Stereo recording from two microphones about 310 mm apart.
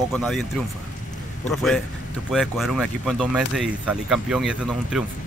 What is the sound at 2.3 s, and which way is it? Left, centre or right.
Speech, centre.